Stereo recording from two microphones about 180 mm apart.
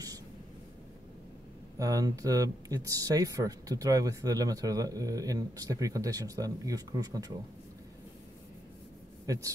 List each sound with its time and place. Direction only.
1.8 s speech: 20° right (ahead or behind)
9.2 s speech: 20° right (ahead or behind)